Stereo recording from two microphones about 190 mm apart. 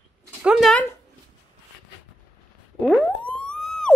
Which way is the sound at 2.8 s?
5° left (ahead or behind).